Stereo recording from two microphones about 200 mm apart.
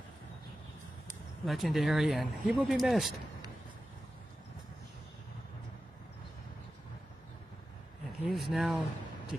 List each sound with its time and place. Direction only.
1.4 s speech: centre (ahead or behind)
8.2 s speech: centre (ahead or behind)